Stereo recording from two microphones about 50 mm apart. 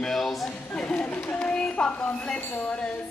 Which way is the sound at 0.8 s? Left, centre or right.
Left.